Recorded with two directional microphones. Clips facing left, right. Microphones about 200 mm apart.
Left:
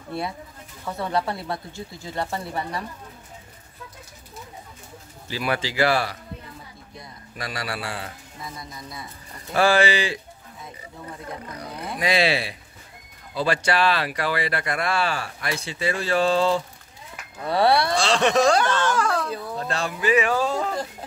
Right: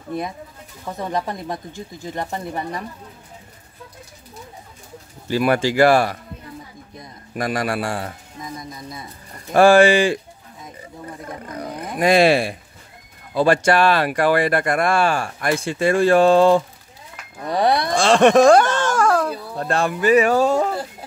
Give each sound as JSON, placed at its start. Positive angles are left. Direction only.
{"t": 0.1, "sound": "speech", "side_deg": -15}
{"t": 5.3, "sound": "speech", "side_deg": -50}
{"t": 7.3, "sound": "speech", "side_deg": -50}
{"t": 8.4, "sound": "music", "side_deg": -20}
{"t": 9.5, "sound": "speech", "side_deg": -50}
{"t": 12.0, "sound": "speech", "side_deg": -50}
{"t": 17.5, "sound": "speech", "side_deg": -15}
{"t": 17.9, "sound": "speech", "side_deg": -50}